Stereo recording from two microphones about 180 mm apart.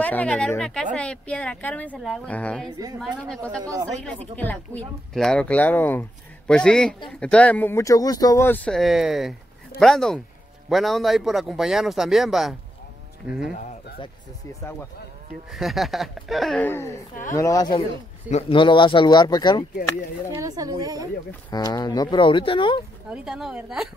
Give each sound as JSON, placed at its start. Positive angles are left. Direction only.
{"t": 0.0, "sound": "speech", "side_deg": 10}
{"t": 3.6, "sound": "speech", "side_deg": -20}
{"t": 4.4, "sound": "speech", "side_deg": 10}
{"t": 14.5, "sound": "speech", "side_deg": 15}
{"t": 15.5, "sound": "speech", "side_deg": 0}
{"t": 20.3, "sound": "speech", "side_deg": -20}
{"t": 21.5, "sound": "speech", "side_deg": 20}
{"t": 23.0, "sound": "speech", "side_deg": -5}